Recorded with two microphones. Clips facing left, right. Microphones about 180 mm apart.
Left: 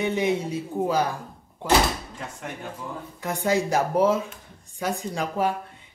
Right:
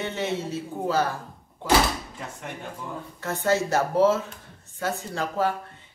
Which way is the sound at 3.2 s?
15° left (ahead or behind).